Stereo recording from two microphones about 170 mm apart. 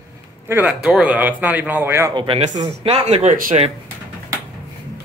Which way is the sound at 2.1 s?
30° right (ahead or behind).